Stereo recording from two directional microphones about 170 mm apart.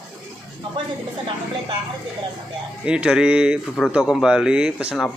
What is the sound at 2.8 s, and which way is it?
Speech, 5° right (ahead or behind).